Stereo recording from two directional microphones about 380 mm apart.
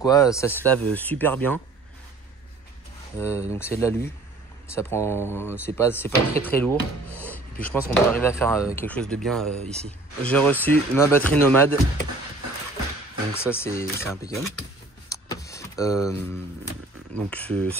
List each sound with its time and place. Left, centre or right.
0.0 s speech: centre
3.2 s speech: centre
13.3 s speech: centre
15.0 s vehicle: centre
17.1 s speech: centre